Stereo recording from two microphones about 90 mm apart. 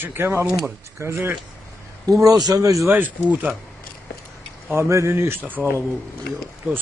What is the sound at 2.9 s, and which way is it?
Speech, 20° right (ahead or behind).